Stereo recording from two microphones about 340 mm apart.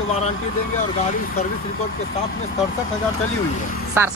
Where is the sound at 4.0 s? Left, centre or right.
Centre.